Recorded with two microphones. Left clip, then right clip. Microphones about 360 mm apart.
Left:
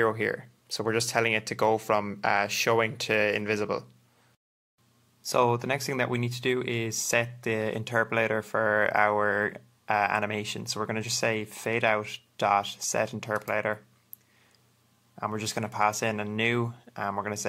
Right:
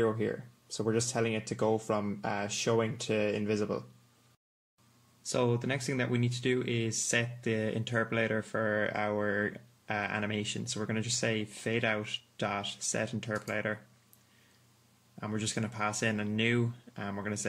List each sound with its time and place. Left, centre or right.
0.2 s speech: left
5.2 s speech: centre
15.3 s speech: centre